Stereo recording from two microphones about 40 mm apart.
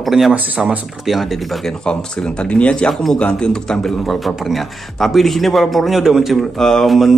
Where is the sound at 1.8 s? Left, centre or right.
Left.